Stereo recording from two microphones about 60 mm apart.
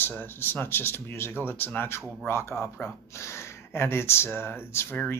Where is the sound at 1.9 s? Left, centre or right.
Left.